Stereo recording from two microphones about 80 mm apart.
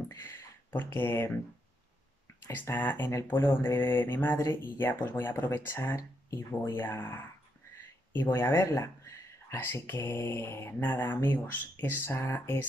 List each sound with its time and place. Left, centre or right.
0.1 s speech: left
2.5 s speech: left